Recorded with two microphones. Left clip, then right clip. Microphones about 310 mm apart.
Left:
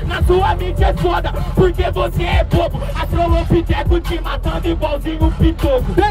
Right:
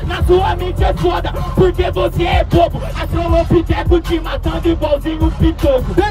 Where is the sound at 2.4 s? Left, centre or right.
Left.